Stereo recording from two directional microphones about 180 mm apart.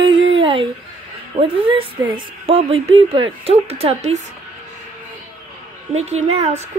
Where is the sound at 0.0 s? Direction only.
25° right (ahead or behind).